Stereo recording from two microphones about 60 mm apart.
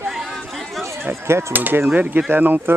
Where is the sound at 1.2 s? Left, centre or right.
Right.